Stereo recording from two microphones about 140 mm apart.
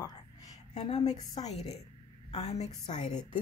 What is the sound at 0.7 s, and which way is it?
Speech, 45° left (ahead or behind).